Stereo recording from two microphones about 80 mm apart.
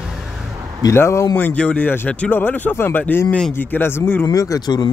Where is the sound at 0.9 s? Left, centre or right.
Left.